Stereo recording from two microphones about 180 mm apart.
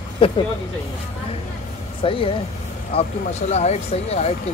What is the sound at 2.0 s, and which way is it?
Speech, 30° left (ahead or behind).